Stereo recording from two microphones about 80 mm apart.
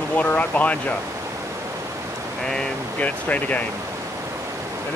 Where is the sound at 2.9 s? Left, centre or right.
Centre.